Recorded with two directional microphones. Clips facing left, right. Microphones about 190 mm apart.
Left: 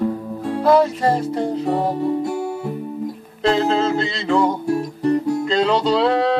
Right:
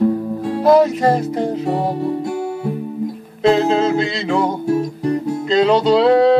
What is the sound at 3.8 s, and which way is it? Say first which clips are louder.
Music: right 3 dB; 15° right (ahead or behind).